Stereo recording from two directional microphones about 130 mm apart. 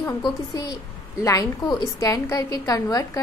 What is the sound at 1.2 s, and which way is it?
A woman's voice, 25° left (ahead or behind).